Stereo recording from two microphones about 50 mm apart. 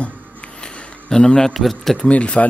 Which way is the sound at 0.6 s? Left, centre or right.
Centre.